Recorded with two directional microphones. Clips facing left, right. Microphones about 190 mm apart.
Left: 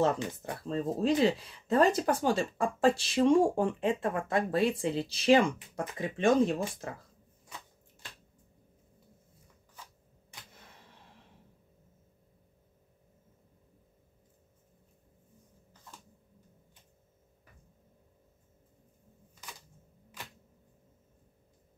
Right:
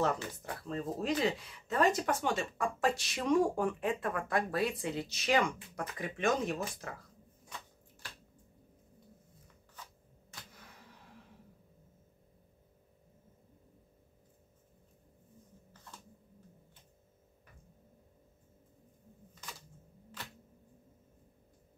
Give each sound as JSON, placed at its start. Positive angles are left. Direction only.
{"t": 0.0, "sound": "speech", "side_deg": 25}